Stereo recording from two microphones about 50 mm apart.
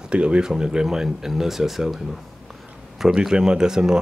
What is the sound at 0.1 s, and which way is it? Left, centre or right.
Speech, right.